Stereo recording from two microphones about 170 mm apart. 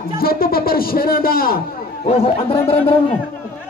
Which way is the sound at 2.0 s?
35° left (ahead or behind).